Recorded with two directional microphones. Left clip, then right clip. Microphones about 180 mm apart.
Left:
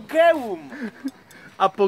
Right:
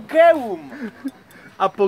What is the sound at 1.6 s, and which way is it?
Speech, 50° left (ahead or behind).